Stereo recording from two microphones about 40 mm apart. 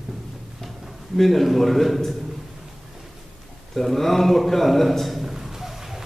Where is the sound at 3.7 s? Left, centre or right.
Centre.